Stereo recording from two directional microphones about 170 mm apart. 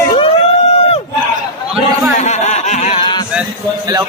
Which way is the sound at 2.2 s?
40° left (ahead or behind).